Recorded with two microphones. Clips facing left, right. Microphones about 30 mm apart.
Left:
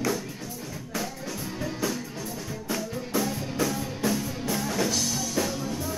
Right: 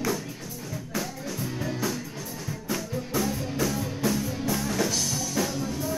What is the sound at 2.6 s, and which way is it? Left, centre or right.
Music, centre.